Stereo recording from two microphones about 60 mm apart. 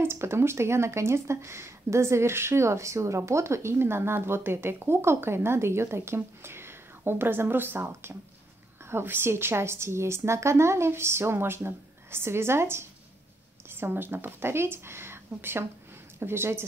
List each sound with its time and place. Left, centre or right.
0.0 s a woman's voice: right